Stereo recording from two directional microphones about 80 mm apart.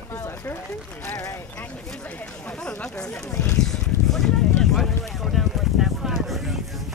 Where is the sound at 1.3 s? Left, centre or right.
Left.